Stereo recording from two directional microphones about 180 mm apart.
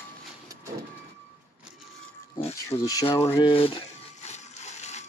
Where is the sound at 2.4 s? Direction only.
35° left (ahead or behind).